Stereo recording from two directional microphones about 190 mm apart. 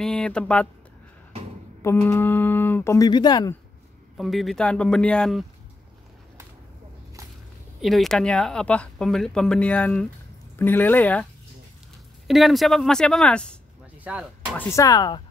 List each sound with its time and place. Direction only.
0.0 s speech: 5° left (ahead or behind)
2.0 s speech: 10° left (ahead or behind)
4.2 s speech: centre (ahead or behind)
7.8 s speech: centre (ahead or behind)
12.3 s speech: centre (ahead or behind)
14.6 s speech: 15° left (ahead or behind)